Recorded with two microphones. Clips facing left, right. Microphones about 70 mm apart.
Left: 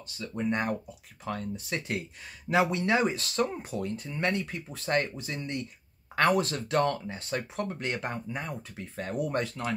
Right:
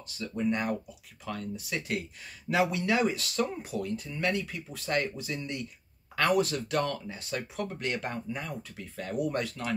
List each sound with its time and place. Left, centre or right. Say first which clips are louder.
0.5 s speech: left 1 dB; left
7.8 s speech: even; left